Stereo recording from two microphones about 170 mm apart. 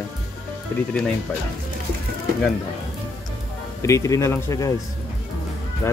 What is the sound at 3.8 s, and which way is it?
Speech, 20° left (ahead or behind).